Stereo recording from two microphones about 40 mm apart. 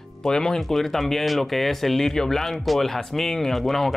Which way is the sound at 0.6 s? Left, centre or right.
Centre.